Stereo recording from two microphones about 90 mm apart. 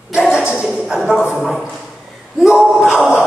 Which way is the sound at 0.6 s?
5° right (ahead or behind).